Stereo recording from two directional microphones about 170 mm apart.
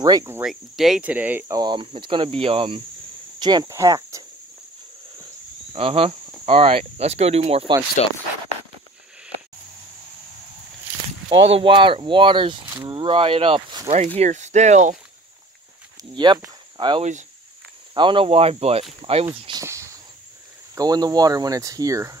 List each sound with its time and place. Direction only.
0.0 s speech: 20° right (ahead or behind)
0.4 s speech: centre (ahead or behind)
1.6 s speech: 30° right (ahead or behind)
5.7 s speech: 35° right (ahead or behind)
8.0 s speech: 40° left (ahead or behind)
11.4 s speech: 35° right (ahead or behind)
13.8 s speech: 40° right (ahead or behind)
16.0 s speech: 25° right (ahead or behind)
19.6 s a sound: 15° right (ahead or behind)
20.7 s speech: 25° right (ahead or behind)